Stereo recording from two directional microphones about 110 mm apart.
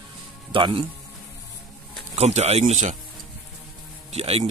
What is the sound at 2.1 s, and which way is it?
Speech, 75° right (ahead or behind).